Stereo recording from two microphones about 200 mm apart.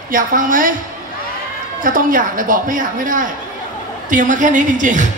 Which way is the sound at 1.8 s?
45° right (ahead or behind).